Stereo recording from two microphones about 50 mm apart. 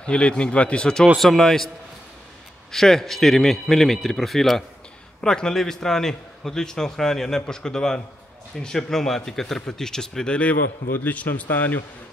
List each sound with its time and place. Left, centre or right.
0.0 s speech: centre
1.2 s a man's voice: centre
2.7 s a man's voice: centre; by 10.6 s left
11.4 s speech: left